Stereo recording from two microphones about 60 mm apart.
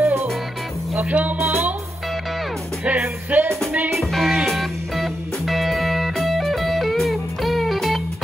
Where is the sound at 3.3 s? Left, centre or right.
Right.